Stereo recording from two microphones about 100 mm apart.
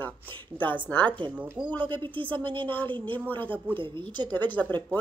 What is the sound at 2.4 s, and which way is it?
Speech, 55° right (ahead or behind).